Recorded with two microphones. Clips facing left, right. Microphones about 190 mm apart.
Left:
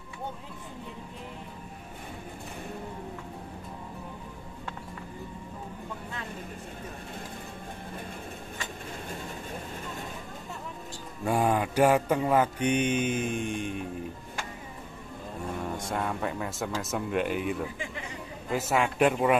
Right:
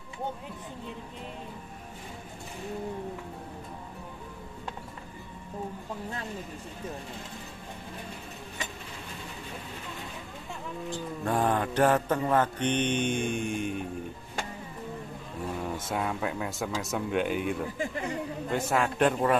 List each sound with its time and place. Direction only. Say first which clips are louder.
11.2 s mantra: left 2 dB; 10° left (ahead or behind)
15.9 s speech: right 1 dB; 5° right (ahead or behind)
17.7 s speech: right 6 dB; 45° right (ahead or behind)
18.5 s speech: left 1 dB; 5° left (ahead or behind)